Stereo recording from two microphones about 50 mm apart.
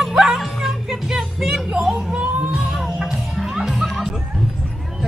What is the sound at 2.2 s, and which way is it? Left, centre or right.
Music, right.